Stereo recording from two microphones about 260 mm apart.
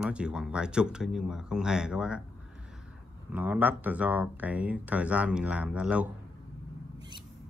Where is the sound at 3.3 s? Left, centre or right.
Centre.